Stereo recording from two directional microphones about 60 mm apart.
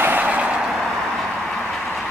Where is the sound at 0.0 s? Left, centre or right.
Right.